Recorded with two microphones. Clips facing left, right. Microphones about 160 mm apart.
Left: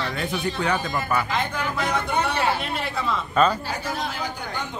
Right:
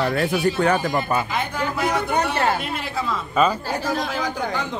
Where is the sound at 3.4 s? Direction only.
5° right (ahead or behind).